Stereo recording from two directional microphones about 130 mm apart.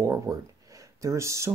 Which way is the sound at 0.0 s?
25° right (ahead or behind).